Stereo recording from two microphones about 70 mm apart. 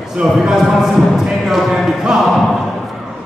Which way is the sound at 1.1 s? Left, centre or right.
Centre.